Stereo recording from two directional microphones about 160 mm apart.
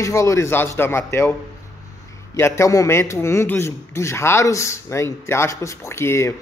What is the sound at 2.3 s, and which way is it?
Speech, 20° left (ahead or behind).